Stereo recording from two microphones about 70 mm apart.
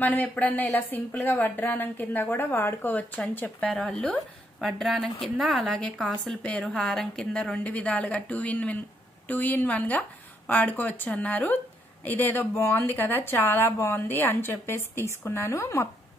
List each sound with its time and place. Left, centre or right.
0.0 s a woman's voice: left
3.6 s speech: centre
6.4 s a woman's voice: centre; by 15.9 s left